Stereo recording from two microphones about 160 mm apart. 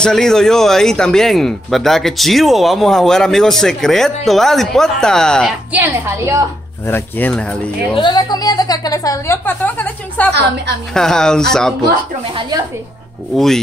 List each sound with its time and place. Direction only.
0.0 s speech: 5° left (ahead or behind)
5.7 s a woman's voice: 15° right (ahead or behind)
6.9 s speech: 10° left (ahead or behind)
7.9 s a woman's voice: 30° left (ahead or behind); by 11.7 s 5° left (ahead or behind)
12.4 s speech: 25° right (ahead or behind)